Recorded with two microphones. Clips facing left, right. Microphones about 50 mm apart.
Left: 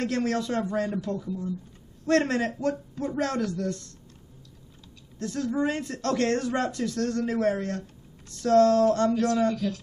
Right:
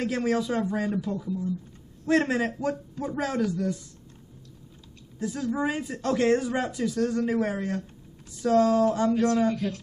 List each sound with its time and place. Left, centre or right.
0.0 s speech: centre
5.2 s speech: centre
9.1 s speech: right